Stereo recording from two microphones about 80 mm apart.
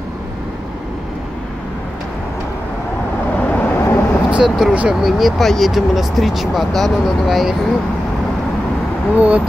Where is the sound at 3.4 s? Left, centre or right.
Centre.